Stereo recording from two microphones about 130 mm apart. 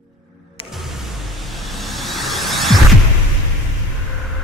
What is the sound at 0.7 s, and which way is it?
Music, centre (ahead or behind).